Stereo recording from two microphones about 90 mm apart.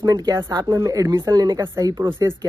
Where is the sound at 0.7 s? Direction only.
35° right (ahead or behind).